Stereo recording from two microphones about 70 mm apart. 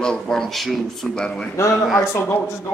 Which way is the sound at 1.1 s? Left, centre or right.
Centre.